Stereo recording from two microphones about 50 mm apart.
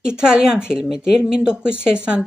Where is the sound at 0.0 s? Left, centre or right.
Centre.